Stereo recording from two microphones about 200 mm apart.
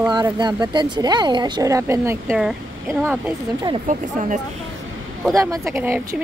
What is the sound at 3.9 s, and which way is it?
Speech, 40° right (ahead or behind).